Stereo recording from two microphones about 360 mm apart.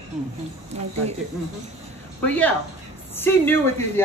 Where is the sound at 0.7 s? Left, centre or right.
Centre.